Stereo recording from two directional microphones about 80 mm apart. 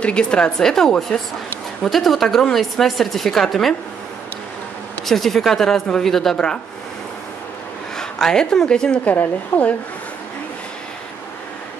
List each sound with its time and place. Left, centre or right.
0.0 s a woman's voice: centre
5.0 s a woman's voice: centre
8.0 s a woman's voice: centre